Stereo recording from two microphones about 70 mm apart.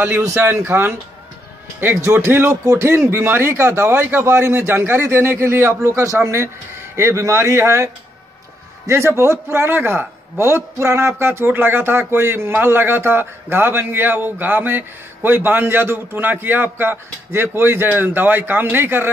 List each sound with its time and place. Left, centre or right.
0.3 s a man's voice: right
2.5 s a man's voice: right